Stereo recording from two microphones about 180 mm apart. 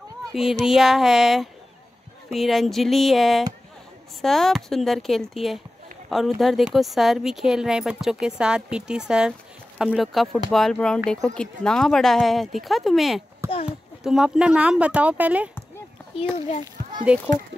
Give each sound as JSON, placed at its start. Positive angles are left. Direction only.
{"t": 0.3, "sound": "a woman's voice", "side_deg": 0}
{"t": 16.3, "sound": "a child's voice", "side_deg": 35}
{"t": 17.1, "sound": "speech", "side_deg": -5}